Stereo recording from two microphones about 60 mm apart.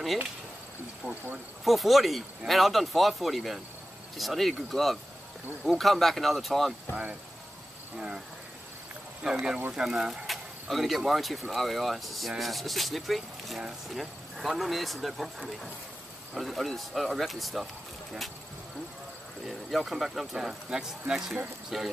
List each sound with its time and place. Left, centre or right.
1.0 s speech: left
1.6 s speech: centre
6.9 s speech: right
9.2 s speech: centre
10.2 s speech: centre
19.4 s speech: centre